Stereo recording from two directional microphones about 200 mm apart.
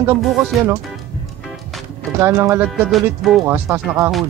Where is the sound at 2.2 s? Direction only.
15° right (ahead or behind).